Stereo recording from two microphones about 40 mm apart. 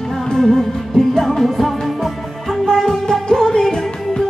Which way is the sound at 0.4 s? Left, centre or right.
Centre.